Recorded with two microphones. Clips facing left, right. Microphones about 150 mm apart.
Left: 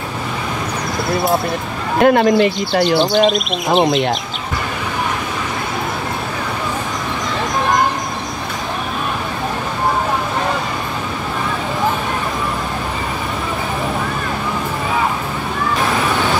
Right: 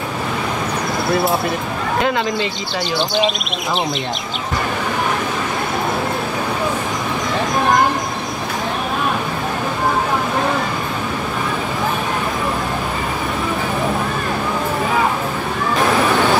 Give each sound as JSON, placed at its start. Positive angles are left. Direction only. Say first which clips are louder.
{"t": 2.0, "sound": "speech", "louder": "left 9 dB", "side_deg": 55}
{"t": 3.0, "sound": "speech", "louder": "left 5 dB", "side_deg": 0}